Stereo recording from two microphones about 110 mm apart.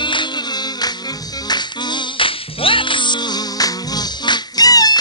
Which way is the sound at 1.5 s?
40° left (ahead or behind).